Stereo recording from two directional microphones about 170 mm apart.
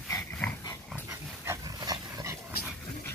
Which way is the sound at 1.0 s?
15° right (ahead or behind).